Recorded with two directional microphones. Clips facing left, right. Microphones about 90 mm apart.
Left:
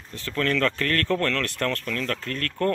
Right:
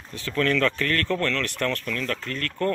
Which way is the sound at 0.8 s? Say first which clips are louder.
Left 1 dB; 55° left (ahead or behind).